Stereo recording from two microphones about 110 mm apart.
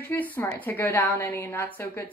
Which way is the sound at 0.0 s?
15° left (ahead or behind).